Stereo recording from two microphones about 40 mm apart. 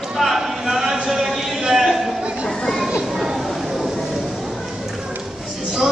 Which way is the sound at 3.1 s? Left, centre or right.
Centre.